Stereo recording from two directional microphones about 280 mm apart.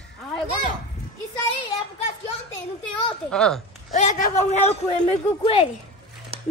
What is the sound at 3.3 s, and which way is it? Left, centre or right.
Speech, centre.